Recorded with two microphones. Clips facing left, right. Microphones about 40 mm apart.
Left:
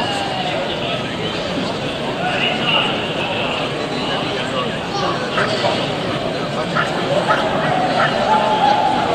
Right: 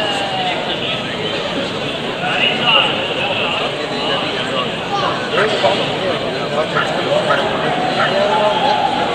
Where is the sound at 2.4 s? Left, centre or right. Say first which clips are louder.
Right 5 dB; right.